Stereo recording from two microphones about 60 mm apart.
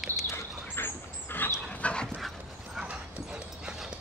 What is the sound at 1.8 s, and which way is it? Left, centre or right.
Dog, centre.